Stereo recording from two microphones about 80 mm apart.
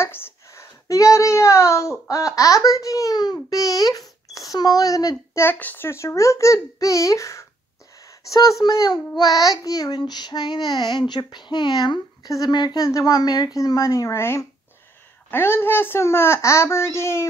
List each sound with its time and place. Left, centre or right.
0.0 s a child's voice: left
5.4 s speech: left
5.9 s a child's voice: left
12.3 s a woman's voice: left